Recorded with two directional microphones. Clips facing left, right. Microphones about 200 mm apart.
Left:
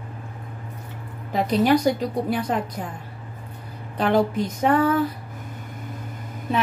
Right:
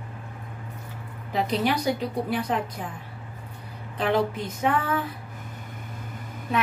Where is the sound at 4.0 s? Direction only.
45° left (ahead or behind).